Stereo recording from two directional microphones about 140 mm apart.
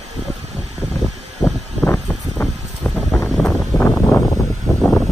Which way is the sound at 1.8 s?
10° left (ahead or behind).